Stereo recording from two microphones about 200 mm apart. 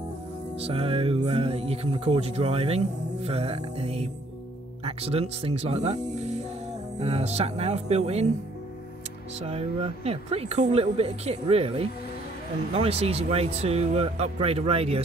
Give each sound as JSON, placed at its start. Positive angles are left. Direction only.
{"t": 0.6, "sound": "speech", "side_deg": -30}
{"t": 7.0, "sound": "speech", "side_deg": -30}
{"t": 9.4, "sound": "speech", "side_deg": -30}